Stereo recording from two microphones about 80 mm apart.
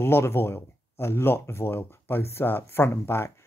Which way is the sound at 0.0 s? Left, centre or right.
Left.